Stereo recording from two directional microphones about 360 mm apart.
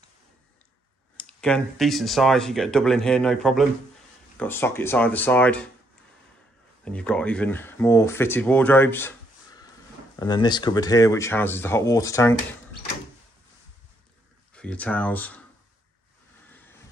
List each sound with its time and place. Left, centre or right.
1.1 s speech: centre
6.8 s speech: centre
10.1 s speech: centre
14.5 s speech: centre